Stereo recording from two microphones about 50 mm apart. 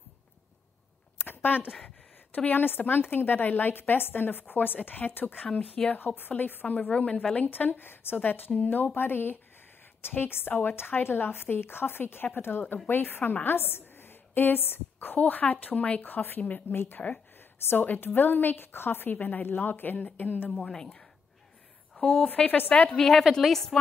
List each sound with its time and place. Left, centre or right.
1.2 s a sound: left
2.3 s a woman's voice: left
7.0 s speech: left
7.4 s a woman's voice: left
15.2 s speech: left
16.0 s a woman's voice: left
17.4 s a sound: left
17.8 s a woman's voice: left
20.6 s a woman's voice: centre
22.5 s a woman's voice: left
22.8 s speech: centre